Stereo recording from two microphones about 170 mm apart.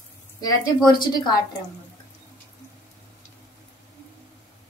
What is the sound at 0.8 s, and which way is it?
Speech, 25° left (ahead or behind).